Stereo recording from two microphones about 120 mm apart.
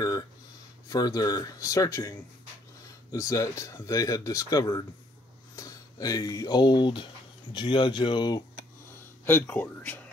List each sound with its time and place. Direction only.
0.0 s a sound: 35° left (ahead or behind)
0.8 s speech: 30° left (ahead or behind)
9.2 s speech: 15° left (ahead or behind)